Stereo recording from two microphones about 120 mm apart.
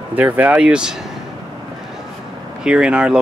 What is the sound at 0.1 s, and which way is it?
Speech, 10° right (ahead or behind).